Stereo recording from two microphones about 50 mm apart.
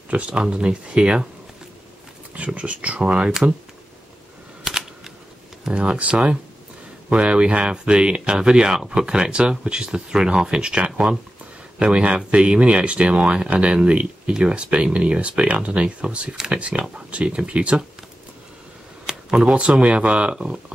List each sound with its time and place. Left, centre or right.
0.1 s speech: right
2.3 s speech: right
4.7 s a sound: centre
5.6 s speech: right
19.3 s speech: right